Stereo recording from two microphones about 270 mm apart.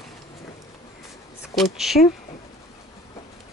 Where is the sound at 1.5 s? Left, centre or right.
Centre.